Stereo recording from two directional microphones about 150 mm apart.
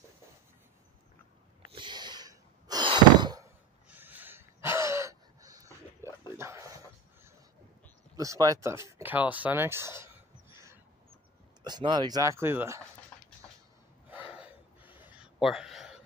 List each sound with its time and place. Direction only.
1.7 s a sound: 30° right (ahead or behind)
6.3 s dog: 15° right (ahead or behind)
8.2 s speech: 25° right (ahead or behind)
11.6 s speech: 30° right (ahead or behind)
13.1 s a sound: 15° left (ahead or behind)
14.1 s gasp: 10° right (ahead or behind)